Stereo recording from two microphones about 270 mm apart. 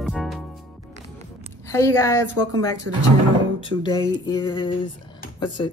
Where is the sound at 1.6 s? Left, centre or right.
Centre.